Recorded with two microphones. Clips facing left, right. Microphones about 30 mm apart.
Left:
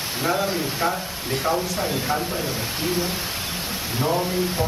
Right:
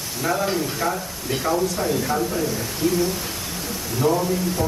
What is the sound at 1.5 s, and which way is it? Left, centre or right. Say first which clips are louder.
Speech: right 3 dB; left.